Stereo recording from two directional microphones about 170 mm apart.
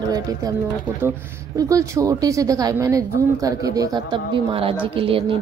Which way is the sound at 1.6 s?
20° right (ahead or behind).